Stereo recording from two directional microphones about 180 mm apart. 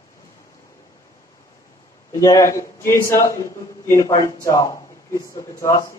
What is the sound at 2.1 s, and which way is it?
A man's voice, 20° left (ahead or behind).